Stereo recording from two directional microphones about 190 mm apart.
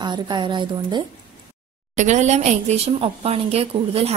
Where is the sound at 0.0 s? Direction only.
25° right (ahead or behind).